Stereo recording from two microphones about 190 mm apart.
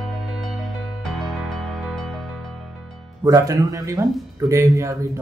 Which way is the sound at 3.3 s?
15° right (ahead or behind).